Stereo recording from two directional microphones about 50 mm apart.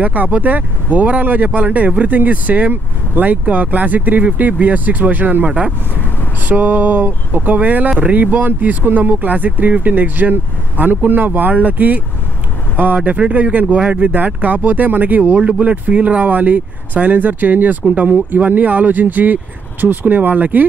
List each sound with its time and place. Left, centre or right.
0.0 s speech: right